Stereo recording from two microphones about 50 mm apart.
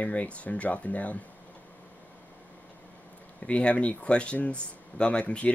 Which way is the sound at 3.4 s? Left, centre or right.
Left.